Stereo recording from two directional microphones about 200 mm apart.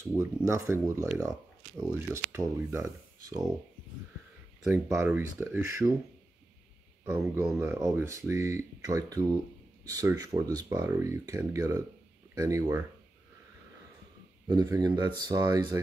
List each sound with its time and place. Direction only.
0.1 s speech: 15° right (ahead or behind)
4.6 s speech: 15° right (ahead or behind)
7.1 s speech: 10° right (ahead or behind)
14.5 s speech: 20° right (ahead or behind)